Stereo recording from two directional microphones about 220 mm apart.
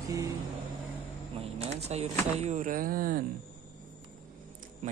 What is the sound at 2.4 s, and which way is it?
Speech, 35° right (ahead or behind).